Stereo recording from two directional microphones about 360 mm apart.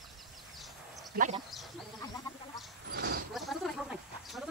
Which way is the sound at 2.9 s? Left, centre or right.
Right.